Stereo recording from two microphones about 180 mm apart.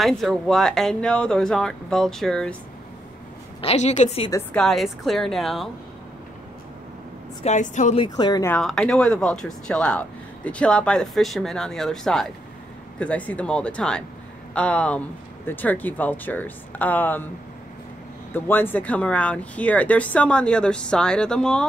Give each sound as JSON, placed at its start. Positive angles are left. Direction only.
{"t": 0.0, "sound": "speech", "side_deg": 0}
{"t": 3.6, "sound": "a woman's voice", "side_deg": 40}
{"t": 4.6, "sound": "speech", "side_deg": 0}
{"t": 7.4, "sound": "a woman's voice", "side_deg": 45}
{"t": 8.0, "sound": "speech", "side_deg": 25}
{"t": 8.5, "sound": "speech", "side_deg": 5}
{"t": 18.3, "sound": "speech", "side_deg": 10}